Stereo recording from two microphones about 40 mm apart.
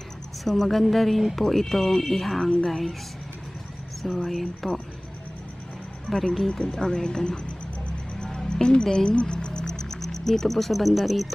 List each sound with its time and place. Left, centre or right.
0.5 s a woman's voice: centre
4.0 s a woman's voice: centre
6.0 s speech: centre
8.5 s speech: left; by 11.3 s centre